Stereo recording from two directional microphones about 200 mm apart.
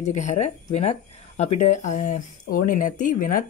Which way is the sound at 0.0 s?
35° left (ahead or behind).